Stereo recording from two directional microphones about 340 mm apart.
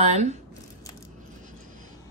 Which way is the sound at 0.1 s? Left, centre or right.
Centre.